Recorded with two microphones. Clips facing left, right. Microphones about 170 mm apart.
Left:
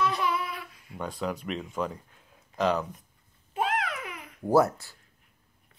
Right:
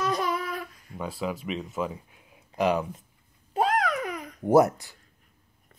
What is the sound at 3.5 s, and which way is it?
Babbling, 40° right (ahead or behind).